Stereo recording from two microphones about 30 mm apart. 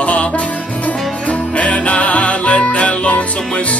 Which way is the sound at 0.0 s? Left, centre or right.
Left.